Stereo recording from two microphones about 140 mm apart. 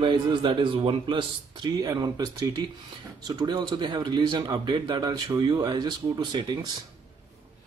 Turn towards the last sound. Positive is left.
turn(degrees=-35)  # may be behind; listen again after turning